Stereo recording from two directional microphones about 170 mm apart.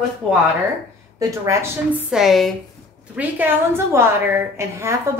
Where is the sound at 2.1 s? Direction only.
Centre (ahead or behind).